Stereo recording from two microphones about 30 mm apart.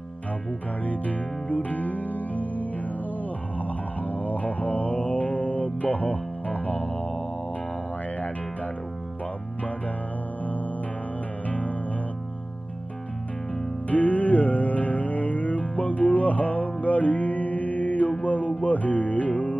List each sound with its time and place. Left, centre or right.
0.8 s music: left
11.4 s music: left
13.8 s music: left